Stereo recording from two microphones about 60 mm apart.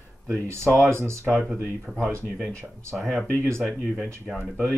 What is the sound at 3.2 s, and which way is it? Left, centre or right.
Speech, left.